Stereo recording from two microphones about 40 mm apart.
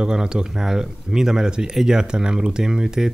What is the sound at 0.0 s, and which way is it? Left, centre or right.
Speech, centre.